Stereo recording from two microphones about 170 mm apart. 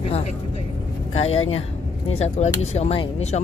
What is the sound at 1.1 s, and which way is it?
Speech, 35° left (ahead or behind).